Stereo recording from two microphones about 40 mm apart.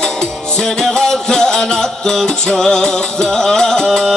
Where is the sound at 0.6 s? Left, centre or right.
Centre.